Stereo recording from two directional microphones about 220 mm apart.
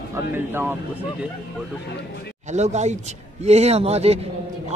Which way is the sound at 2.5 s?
30° right (ahead or behind).